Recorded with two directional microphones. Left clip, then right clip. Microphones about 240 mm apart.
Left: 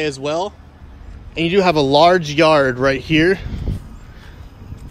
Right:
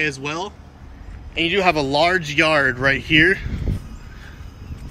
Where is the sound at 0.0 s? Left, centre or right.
Centre.